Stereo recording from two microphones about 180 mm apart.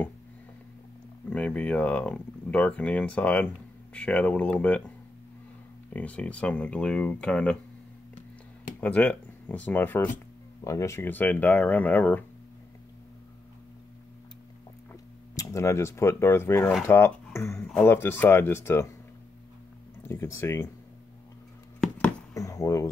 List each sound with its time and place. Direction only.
1.3 s speech: 5° left (ahead or behind)
5.9 s speech: 10° left (ahead or behind)
8.8 s speech: 10° left (ahead or behind)
14.9 s speech: 15° left (ahead or behind)
20.0 s speech: 15° left (ahead or behind)
22.3 s a sound: 20° left (ahead or behind)